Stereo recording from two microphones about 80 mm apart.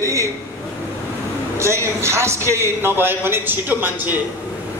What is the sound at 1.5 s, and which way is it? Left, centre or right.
A man's voice, right.